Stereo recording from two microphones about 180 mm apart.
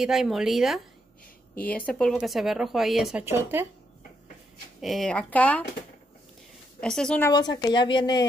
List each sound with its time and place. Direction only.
0.0 s speech: centre (ahead or behind)
4.8 s a woman's voice: centre (ahead or behind)
6.8 s speech: 5° left (ahead or behind)
7.2 s a woman's voice: 25° left (ahead or behind)